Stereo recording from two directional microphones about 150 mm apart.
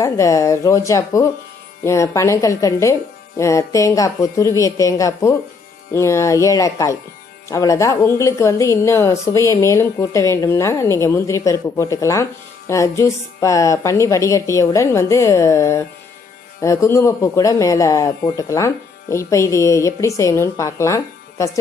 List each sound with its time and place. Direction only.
0.0 s a woman's voice: 20° left (ahead or behind)